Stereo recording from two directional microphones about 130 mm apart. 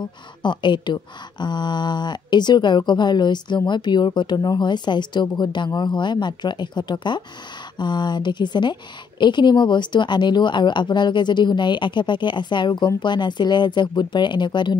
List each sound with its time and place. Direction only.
0.4 s a woman's voice: 35° left (ahead or behind)